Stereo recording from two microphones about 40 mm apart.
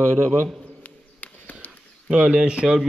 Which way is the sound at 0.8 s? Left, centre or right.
Left.